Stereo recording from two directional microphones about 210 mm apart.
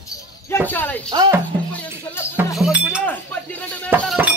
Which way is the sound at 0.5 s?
10° left (ahead or behind).